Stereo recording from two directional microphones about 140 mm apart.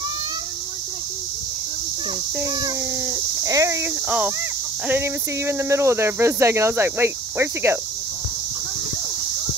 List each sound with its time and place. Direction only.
2.4 s speech: 25° right (ahead or behind)